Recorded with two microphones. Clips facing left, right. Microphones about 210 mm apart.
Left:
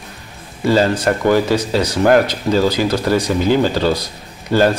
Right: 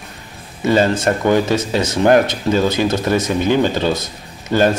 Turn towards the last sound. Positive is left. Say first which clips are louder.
# left 1 dB
turn(degrees=-20)  # may be behind; listen again after turning